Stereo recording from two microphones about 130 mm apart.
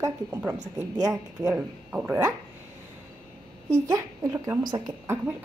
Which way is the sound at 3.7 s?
25° right (ahead or behind).